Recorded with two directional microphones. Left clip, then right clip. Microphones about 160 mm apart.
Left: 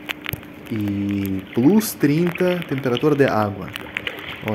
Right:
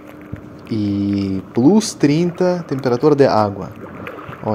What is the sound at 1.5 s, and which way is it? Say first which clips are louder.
Speech: right 4 dB; 5° right (ahead or behind).